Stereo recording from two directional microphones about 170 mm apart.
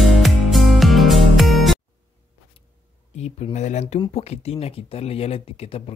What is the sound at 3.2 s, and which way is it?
Speech, 40° left (ahead or behind).